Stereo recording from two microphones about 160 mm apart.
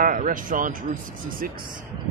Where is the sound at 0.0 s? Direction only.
55° right (ahead or behind).